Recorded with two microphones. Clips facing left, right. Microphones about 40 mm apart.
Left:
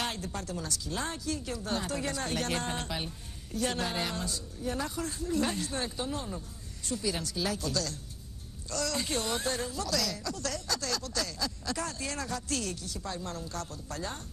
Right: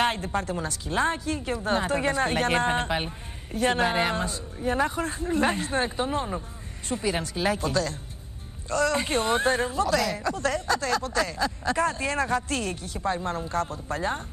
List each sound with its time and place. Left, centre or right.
0.0 s speech: right